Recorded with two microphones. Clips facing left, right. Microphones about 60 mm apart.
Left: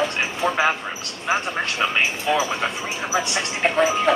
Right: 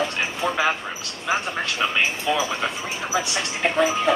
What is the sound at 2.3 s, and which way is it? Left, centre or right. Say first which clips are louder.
Speech: left 3 dB; left.